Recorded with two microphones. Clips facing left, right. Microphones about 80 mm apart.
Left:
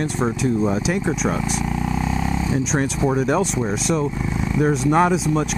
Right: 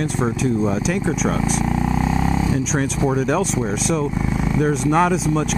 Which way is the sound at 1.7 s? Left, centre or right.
Centre.